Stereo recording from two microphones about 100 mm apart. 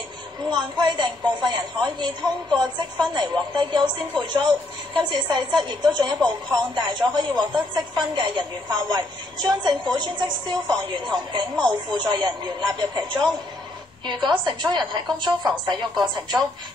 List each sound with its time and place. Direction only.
0.5 s a woman's voice: 45° right (ahead or behind)